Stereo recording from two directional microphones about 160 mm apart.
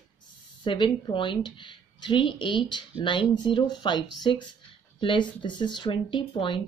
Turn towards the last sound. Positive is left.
turn(degrees=30)  # may be behind; listen again after turning